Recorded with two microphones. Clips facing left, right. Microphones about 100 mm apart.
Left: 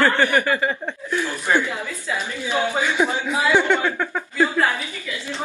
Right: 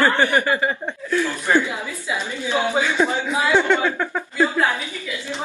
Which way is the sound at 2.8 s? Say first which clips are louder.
Right 1 dB; 15° left (ahead or behind).